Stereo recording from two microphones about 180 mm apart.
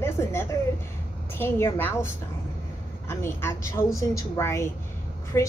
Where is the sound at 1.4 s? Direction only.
10° left (ahead or behind).